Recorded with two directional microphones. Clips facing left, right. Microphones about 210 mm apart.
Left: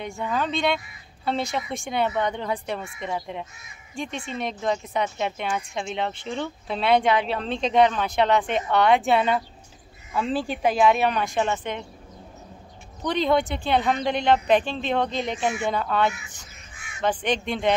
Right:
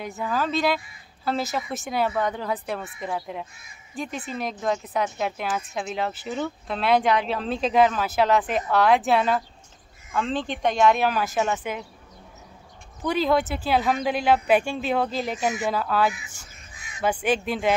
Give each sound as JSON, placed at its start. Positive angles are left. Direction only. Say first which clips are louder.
{"t": 0.0, "sound": "speech", "louder": "even", "side_deg": 0}
{"t": 13.0, "sound": "speech", "louder": "even", "side_deg": -5}
{"t": 15.3, "sound": "speech", "louder": "even", "side_deg": -40}
{"t": 15.6, "sound": "speech", "louder": "right 1 dB", "side_deg": -5}
{"t": 16.7, "sound": "crow", "louder": "even", "side_deg": -35}
{"t": 17.0, "sound": "speech", "louder": "right 1 dB", "side_deg": -5}